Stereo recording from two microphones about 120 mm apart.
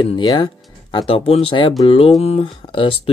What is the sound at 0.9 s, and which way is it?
Speech, 55° left (ahead or behind).